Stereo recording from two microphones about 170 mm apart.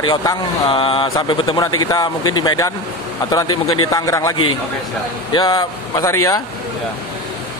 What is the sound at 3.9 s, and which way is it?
A man's voice, 20° left (ahead or behind).